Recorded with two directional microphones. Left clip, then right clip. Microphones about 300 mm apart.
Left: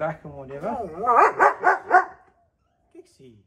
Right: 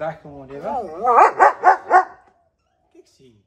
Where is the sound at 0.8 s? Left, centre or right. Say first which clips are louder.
Right 4 dB; right.